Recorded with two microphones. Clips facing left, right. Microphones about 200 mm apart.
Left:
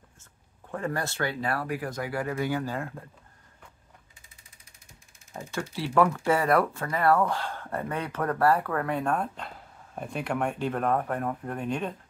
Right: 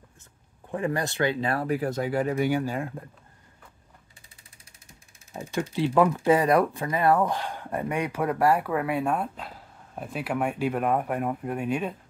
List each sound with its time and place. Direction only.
0.7 s speech: 15° right (ahead or behind)
5.3 s speech: 15° right (ahead or behind)